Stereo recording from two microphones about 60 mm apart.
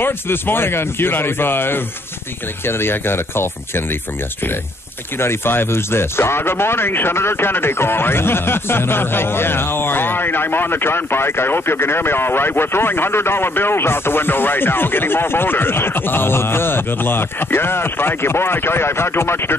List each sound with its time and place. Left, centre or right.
0.0 s speech: left
5.2 s speech: left